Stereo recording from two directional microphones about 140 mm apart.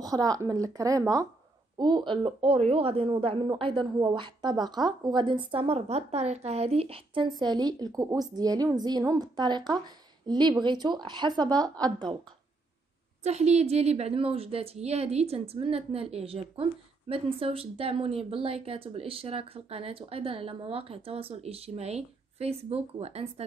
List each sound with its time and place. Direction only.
0.0 s a woman's voice: 25° right (ahead or behind)
13.2 s speech: 50° right (ahead or behind)